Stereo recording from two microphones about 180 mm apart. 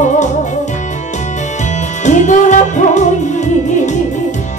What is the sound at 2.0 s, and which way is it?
Music, 45° left (ahead or behind).